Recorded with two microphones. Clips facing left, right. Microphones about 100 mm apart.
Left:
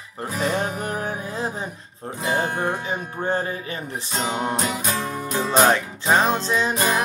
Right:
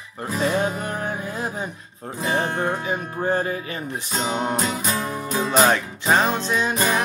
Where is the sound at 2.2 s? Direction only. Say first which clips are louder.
Even; 30° left (ahead or behind).